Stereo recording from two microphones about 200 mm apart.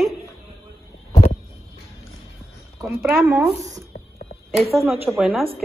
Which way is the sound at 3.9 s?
60° left (ahead or behind).